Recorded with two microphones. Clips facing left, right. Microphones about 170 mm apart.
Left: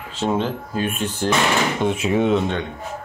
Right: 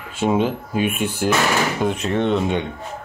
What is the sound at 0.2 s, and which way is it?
Speech, 10° right (ahead or behind).